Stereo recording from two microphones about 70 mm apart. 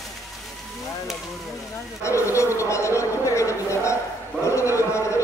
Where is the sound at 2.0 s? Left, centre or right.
Left.